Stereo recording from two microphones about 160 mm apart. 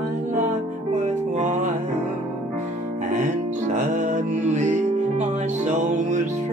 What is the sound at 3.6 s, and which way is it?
Music, 50° right (ahead or behind).